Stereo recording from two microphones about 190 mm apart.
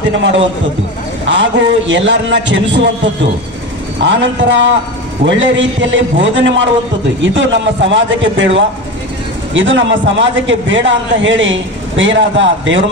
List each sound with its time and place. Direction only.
0.1 s a man's voice: 75° right (ahead or behind)
4.0 s a man's voice: 75° right (ahead or behind)